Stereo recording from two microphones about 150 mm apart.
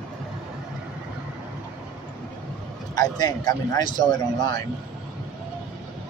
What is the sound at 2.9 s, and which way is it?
Speech, 25° left (ahead or behind).